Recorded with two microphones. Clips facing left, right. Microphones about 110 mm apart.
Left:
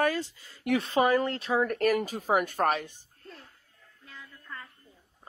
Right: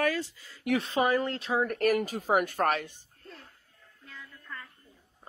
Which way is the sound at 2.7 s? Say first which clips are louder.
Even; 30° left (ahead or behind).